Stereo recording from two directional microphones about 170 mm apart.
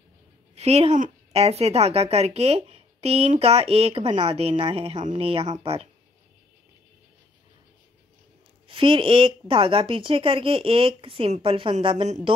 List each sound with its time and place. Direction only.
0.6 s a woman's voice: 40° right (ahead or behind)
8.6 s a woman's voice: 30° right (ahead or behind)